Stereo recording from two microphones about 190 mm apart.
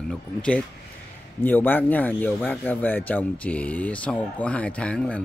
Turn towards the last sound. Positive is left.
turn(degrees=5)  # may be behind; listen again after turning